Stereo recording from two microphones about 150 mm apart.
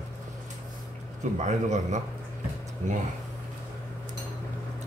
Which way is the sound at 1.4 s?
50° right (ahead or behind).